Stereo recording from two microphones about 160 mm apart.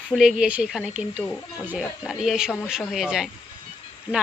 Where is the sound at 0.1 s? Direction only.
5° right (ahead or behind).